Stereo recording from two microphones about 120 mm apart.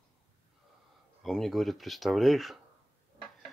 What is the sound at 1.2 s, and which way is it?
Speech, centre (ahead or behind).